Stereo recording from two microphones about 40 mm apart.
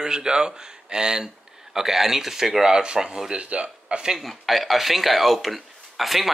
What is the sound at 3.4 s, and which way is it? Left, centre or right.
Speech, right.